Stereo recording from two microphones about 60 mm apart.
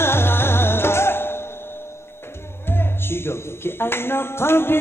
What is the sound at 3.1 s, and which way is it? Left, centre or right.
Music, left.